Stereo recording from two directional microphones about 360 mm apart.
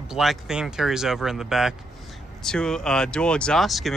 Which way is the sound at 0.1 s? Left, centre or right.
Centre.